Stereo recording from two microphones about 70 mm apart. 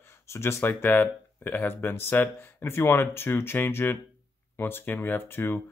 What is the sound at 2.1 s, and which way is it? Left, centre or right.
Speech, left.